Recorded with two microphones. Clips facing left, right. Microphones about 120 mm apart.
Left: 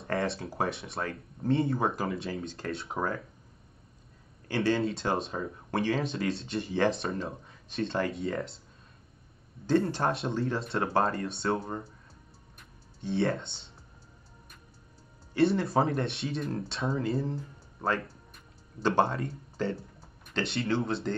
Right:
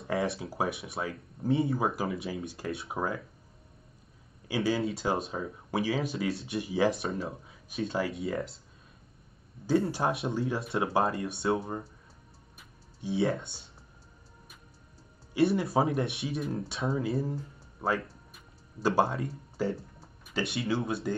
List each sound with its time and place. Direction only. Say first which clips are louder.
0.0 s speech: even; centre (ahead or behind)
4.5 s speech: left 1 dB; 5° right (ahead or behind)
9.7 s speech: left 1 dB; 10° right (ahead or behind)
12.5 s a sound: right 1 dB; 5° right (ahead or behind)
13.4 s speech: left 1 dB; 25° left (ahead or behind)
15.5 s speech: even; 5° right (ahead or behind)